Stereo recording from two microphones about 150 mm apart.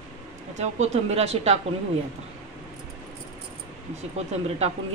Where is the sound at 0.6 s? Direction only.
50° right (ahead or behind).